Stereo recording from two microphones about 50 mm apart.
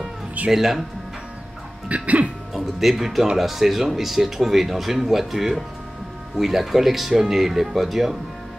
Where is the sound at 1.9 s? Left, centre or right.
Right.